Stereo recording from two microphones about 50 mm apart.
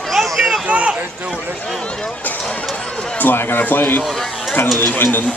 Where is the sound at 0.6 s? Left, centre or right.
Right.